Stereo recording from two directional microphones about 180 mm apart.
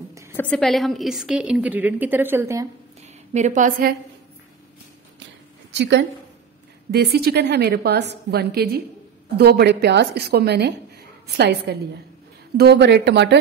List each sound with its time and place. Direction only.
0.3 s a woman's voice: 10° left (ahead or behind); by 2.7 s 15° right (ahead or behind)
3.0 s a sound: 40° right (ahead or behind)
5.8 s speech: 75° right (ahead or behind)
6.9 s a woman's voice: 65° right (ahead or behind)